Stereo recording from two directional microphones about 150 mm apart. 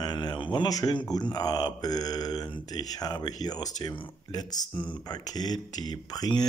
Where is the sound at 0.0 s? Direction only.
30° left (ahead or behind).